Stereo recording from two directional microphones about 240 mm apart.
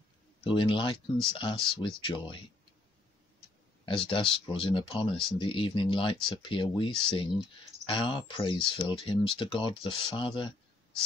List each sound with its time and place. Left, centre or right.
0.4 s speech: left
3.8 s speech: left